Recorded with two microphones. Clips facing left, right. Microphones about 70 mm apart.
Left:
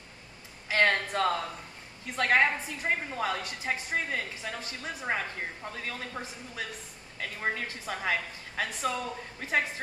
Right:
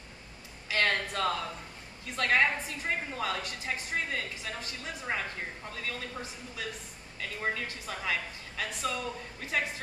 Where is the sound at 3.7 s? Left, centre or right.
Left.